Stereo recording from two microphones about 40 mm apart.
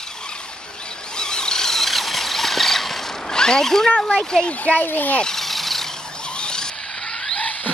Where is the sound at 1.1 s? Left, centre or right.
Centre.